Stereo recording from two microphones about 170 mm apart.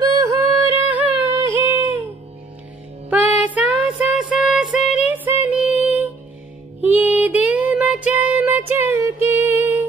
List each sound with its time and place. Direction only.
0.0 s music: 20° right (ahead or behind)
3.1 s music: 10° right (ahead or behind)